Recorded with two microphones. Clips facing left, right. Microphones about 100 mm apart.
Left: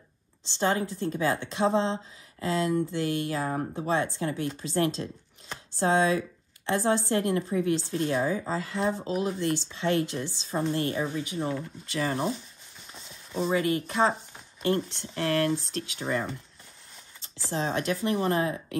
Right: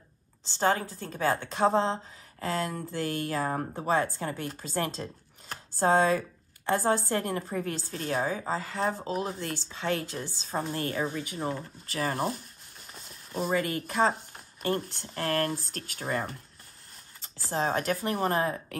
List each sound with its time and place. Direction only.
0.6 s speech: 45° right (ahead or behind)